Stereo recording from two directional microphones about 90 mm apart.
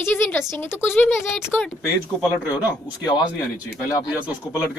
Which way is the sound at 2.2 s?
20° right (ahead or behind).